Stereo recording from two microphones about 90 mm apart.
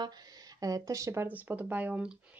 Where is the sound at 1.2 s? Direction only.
20° right (ahead or behind).